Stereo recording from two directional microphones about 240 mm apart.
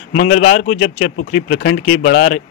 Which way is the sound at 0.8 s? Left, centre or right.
Left.